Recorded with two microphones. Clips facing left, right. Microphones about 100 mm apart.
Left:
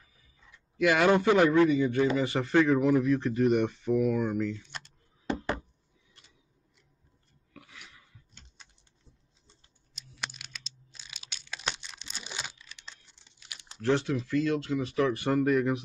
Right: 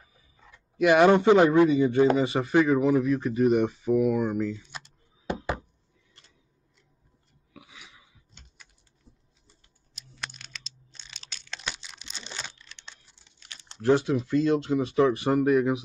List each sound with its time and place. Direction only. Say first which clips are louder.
0.7 s a man's voice: right 5 dB; 20° right (ahead or behind)
2.7 s speech: right 2 dB; centre (ahead or behind)
3.5 s a sound: right 3 dB; 10° right (ahead or behind)
7.5 s a sound: right 1 dB; 5° right (ahead or behind)
9.9 s a sound: even; 5° left (ahead or behind)
11.7 s crumpling: even; 5° right (ahead or behind)
12.6 s typing: right 1 dB; centre (ahead or behind)
13.7 s a man's voice: right 5 dB; 20° right (ahead or behind)
15.3 s speech: right 3 dB; 10° right (ahead or behind)